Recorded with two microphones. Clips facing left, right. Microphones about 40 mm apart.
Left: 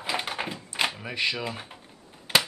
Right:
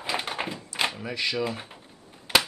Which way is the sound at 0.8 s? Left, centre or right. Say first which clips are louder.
Even; centre.